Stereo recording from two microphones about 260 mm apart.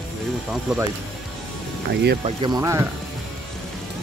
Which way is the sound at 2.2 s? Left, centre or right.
Centre.